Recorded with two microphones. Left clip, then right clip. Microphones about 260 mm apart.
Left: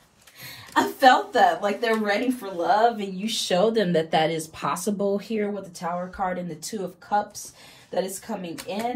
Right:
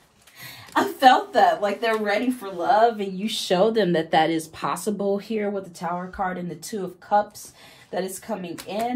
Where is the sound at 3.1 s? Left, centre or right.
Right.